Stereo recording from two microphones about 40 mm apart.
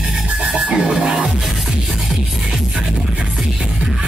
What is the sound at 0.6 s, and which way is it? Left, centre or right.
Music, right.